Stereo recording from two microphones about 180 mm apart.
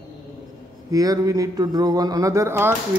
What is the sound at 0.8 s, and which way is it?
Speech, 20° right (ahead or behind).